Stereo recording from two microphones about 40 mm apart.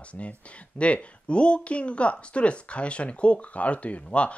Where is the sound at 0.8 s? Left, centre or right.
Left.